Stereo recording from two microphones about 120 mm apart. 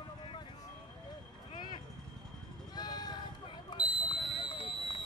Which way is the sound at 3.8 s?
15° right (ahead or behind).